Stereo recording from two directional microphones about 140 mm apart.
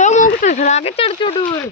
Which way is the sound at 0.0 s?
65° left (ahead or behind).